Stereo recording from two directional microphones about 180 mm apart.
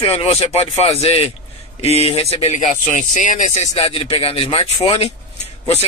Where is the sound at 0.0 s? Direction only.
35° left (ahead or behind).